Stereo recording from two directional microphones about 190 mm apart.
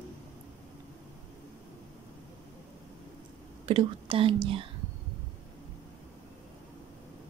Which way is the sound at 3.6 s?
30° right (ahead or behind).